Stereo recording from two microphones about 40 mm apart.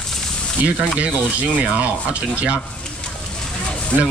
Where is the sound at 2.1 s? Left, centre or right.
Right.